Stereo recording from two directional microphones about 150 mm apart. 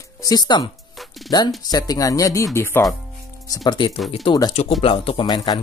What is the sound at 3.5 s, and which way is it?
Speech, 25° left (ahead or behind).